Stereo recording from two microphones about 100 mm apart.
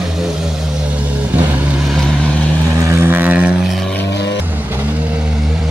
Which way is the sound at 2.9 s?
25° right (ahead or behind).